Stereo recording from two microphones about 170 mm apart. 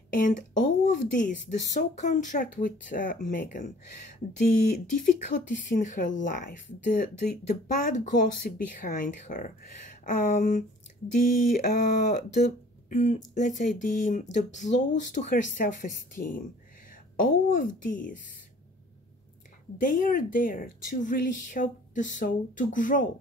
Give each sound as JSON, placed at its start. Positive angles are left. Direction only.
{"t": 0.1, "sound": "speech", "side_deg": 50}
{"t": 12.9, "sound": "speech", "side_deg": 45}
{"t": 19.8, "sound": "speech", "side_deg": 50}